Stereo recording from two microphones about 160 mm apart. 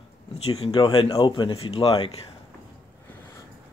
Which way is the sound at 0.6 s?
35° left (ahead or behind).